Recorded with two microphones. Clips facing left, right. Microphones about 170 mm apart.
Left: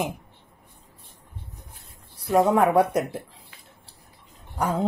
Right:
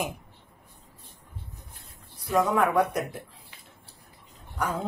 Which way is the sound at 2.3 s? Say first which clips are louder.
Left 4 dB; 30° left (ahead or behind).